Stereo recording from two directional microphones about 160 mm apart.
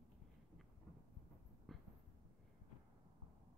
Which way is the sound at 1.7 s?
Centre (ahead or behind).